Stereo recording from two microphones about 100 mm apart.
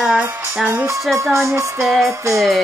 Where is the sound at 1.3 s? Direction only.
30° right (ahead or behind).